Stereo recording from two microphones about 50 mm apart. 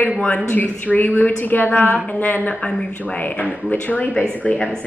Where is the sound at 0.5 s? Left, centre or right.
Left.